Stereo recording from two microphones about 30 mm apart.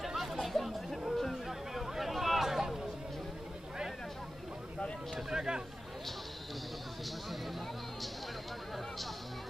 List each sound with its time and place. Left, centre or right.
0.0 s chatter: centre
1.7 s a sound: centre
5.3 s chatter: right